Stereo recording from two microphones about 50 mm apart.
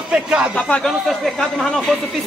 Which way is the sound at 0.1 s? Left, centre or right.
Right.